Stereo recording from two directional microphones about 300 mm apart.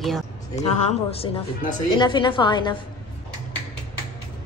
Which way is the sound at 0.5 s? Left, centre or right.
Left.